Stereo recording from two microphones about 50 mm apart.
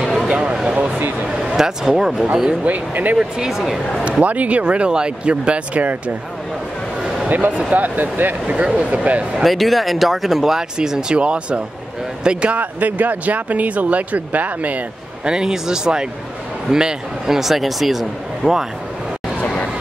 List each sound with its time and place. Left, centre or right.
0.0 s a sound: centre
0.4 s a sound: centre
0.7 s a sound: right
1.2 s speech: centre
2.6 s speech: right
3.2 s speech: centre
4.2 s speech: right
7.2 s speech: right
8.5 s speech: right
9.4 s speech: centre
12.5 s speech: right
15.2 s speech: centre